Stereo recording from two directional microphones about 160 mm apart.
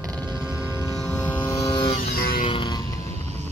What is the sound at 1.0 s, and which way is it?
Vehicle, 5° left (ahead or behind).